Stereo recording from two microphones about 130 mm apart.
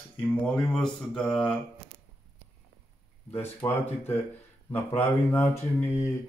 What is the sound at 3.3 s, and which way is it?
Speech, 15° left (ahead or behind).